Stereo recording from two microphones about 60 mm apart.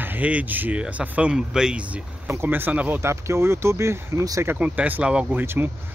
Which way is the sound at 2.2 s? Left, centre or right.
Right.